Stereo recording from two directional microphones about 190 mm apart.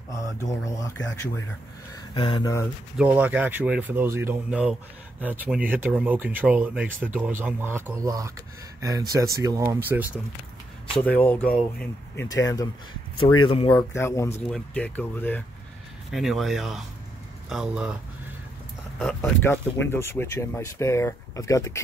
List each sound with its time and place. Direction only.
0.4 s speech: 15° left (ahead or behind)
3.0 s speech: 5° right (ahead or behind)
11.0 s speech: 10° left (ahead or behind)
12.3 s speech: 20° left (ahead or behind)
13.9 s speech: 15° left (ahead or behind)
16.1 s speech: centre (ahead or behind)
18.9 s speech: centre (ahead or behind)
19.4 s speech: 10° left (ahead or behind)